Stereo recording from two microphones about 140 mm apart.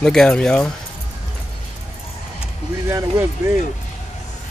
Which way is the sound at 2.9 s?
20° right (ahead or behind).